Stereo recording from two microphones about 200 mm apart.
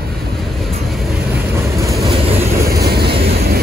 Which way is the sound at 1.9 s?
Centre (ahead or behind).